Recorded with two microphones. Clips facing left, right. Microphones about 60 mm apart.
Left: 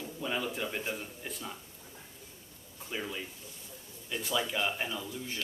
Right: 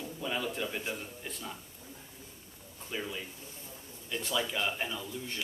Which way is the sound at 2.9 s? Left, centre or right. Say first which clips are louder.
Even; centre.